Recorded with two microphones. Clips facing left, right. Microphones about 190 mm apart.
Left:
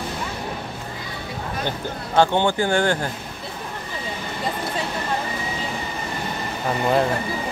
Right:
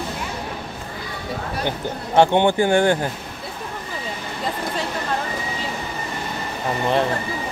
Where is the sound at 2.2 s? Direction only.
20° right (ahead or behind).